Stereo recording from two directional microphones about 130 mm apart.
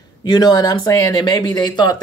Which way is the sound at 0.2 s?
30° left (ahead or behind).